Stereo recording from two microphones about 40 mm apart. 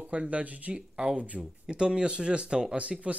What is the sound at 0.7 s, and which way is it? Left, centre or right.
Speech, right.